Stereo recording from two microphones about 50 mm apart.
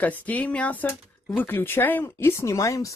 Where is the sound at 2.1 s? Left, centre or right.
Left.